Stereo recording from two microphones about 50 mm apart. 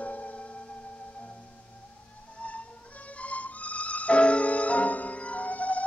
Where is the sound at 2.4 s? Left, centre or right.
Left.